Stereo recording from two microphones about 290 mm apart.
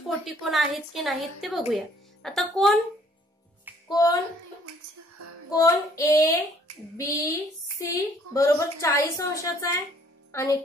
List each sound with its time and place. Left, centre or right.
0.2 s a woman's voice: centre
3.9 s a woman's voice: centre
4.6 s female singing: right
5.5 s a woman's voice: centre